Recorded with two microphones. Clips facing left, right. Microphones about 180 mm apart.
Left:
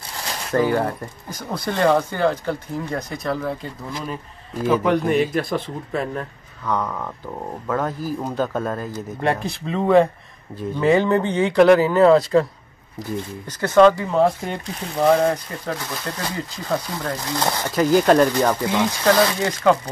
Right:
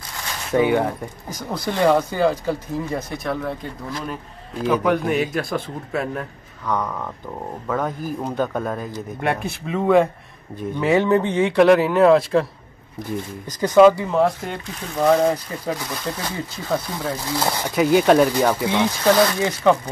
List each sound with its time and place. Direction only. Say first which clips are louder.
0.5 s speech: right 1 dB; centre (ahead or behind)
13.5 s speech: right 1 dB; 10° right (ahead or behind)